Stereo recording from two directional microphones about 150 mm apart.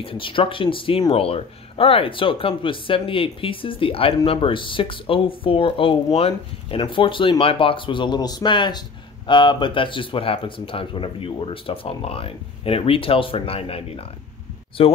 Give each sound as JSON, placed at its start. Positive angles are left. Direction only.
{"t": 0.0, "sound": "speech", "side_deg": 35}